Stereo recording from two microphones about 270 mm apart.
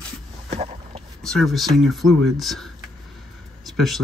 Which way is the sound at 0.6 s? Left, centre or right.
Right.